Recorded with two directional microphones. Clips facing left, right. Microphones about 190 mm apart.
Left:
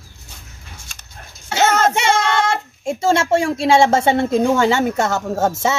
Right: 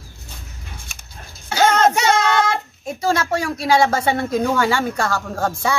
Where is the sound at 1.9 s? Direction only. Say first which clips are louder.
Even; 25° left (ahead or behind).